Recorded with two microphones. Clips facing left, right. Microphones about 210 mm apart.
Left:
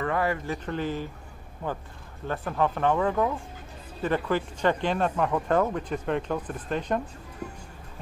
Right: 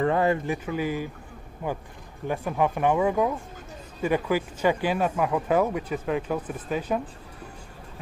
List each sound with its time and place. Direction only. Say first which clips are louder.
0.0 s speech: right 4 dB; 25° right (ahead or behind)
0.7 s speech: right 2 dB; 10° right (ahead or behind)